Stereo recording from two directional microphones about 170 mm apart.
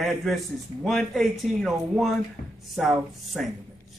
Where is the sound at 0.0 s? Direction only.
Centre (ahead or behind).